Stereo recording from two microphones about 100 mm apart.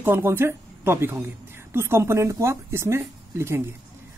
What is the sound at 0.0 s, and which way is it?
A woman's voice, 20° right (ahead or behind).